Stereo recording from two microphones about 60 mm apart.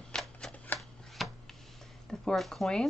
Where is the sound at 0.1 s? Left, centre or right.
Centre.